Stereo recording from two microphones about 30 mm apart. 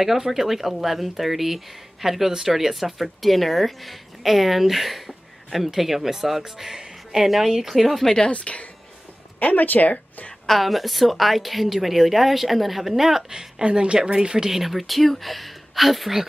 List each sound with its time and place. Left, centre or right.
0.0 s speech: centre
8.3 s speech: left
9.5 s speech: left
10.6 s a woman's voice: centre
13.3 s speech: right
14.5 s a woman's voice: centre